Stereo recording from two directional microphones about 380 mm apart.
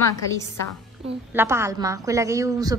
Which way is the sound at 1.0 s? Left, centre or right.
Centre.